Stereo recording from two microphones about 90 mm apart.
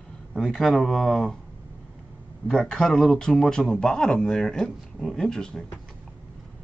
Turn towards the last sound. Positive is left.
turn(degrees=5)  # may be behind; listen again after turning